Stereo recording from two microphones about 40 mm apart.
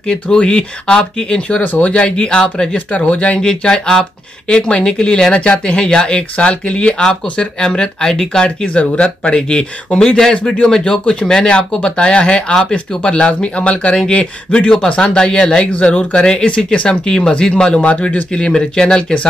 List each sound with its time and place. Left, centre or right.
0.0 s speech: left
1.6 s speech: left
1.9 s speech: left
2.9 s speech: left
3.4 s speech: centre
8.6 s speech: left; by 10.3 s centre
10.3 s speech: left
10.6 s speech: centre
17.7 s speech: left
18.0 s speech: left